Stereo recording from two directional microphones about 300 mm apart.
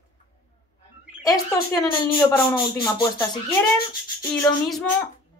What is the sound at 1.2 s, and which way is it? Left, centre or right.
Speech, centre.